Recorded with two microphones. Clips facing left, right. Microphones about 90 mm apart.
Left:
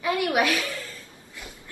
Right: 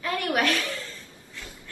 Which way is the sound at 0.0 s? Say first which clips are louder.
Left 2 dB; 10° left (ahead or behind).